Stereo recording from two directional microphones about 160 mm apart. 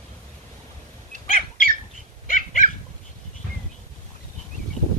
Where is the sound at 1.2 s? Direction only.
60° left (ahead or behind).